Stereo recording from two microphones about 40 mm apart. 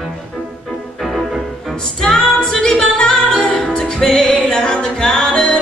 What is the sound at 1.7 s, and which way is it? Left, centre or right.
Music, centre.